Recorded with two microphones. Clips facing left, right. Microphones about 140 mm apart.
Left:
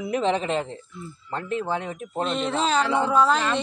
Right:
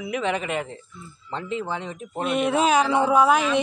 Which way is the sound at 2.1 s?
10° right (ahead or behind).